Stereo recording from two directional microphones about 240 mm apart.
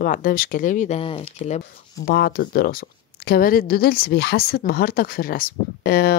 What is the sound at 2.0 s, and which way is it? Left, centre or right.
A woman's voice, left.